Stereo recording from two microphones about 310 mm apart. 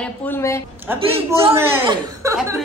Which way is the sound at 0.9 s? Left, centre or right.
Centre.